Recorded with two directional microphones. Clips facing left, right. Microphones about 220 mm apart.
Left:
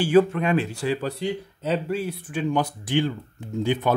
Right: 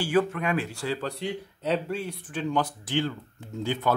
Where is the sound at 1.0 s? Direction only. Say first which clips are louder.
Left 4 dB; centre (ahead or behind).